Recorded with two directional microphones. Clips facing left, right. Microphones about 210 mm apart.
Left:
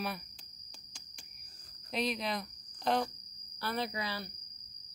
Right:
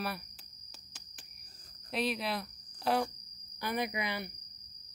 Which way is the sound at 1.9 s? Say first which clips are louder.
Right 1 dB; 5° right (ahead or behind).